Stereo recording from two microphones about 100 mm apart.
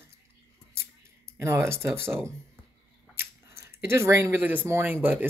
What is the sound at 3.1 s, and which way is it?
Speech, 25° right (ahead or behind).